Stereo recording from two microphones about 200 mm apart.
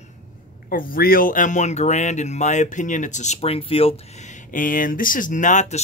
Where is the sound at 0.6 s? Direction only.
45° left (ahead or behind).